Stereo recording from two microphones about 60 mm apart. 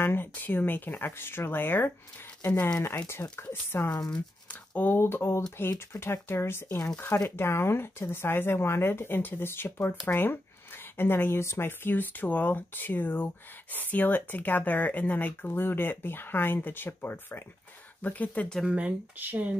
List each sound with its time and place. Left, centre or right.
0.0 s a sound: left
0.3 s speech: left
3.1 s speech: left
4.5 s speech: left
18.0 s speech: left
18.7 s speech: right